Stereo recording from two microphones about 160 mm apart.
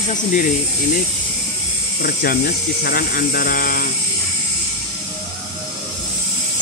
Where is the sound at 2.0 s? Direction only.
65° left (ahead or behind).